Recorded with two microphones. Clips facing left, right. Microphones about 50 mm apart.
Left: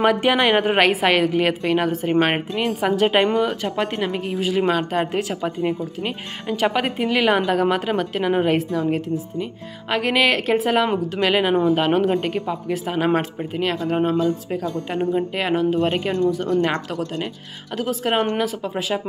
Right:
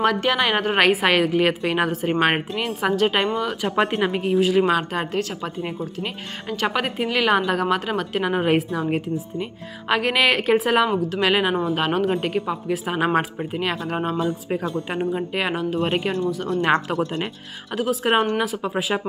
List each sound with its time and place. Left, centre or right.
0.0 s a woman's voice: centre
3.6 s a woman's voice: centre
4.4 s a woman's voice: centre
5.1 s a woman's voice: centre
6.5 s a woman's voice: centre
9.8 s a woman's voice: centre
14.1 s a woman's voice: right
15.3 s a woman's voice: centre
15.9 s a woman's voice: centre
16.4 s speech: right
17.7 s a woman's voice: centre